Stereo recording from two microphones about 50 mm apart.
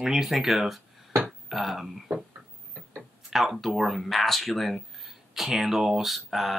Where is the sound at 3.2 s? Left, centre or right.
Centre.